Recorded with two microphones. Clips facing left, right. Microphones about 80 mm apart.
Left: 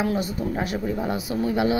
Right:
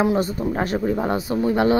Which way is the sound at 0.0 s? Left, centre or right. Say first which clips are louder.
Right 5 dB; right.